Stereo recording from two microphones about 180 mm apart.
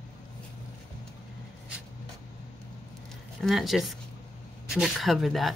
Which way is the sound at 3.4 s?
Centre (ahead or behind).